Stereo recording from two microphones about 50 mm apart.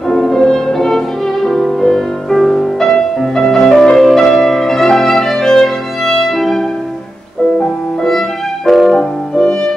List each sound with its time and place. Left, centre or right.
0.1 s music: centre
8.0 s music: centre